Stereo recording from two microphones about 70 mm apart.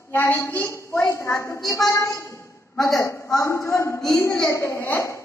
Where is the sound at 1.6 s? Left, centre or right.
Left.